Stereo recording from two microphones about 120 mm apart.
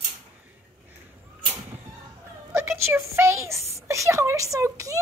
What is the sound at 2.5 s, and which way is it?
A woman's voice, 20° right (ahead or behind).